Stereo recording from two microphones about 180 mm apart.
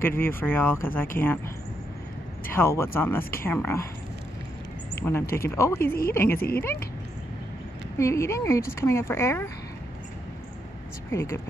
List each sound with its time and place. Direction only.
0.0 s speech: 10° left (ahead or behind)
2.4 s speech: 15° left (ahead or behind)
5.3 s speech: 15° left (ahead or behind)
8.0 s speech: 15° left (ahead or behind)
11.1 s speech: 15° left (ahead or behind)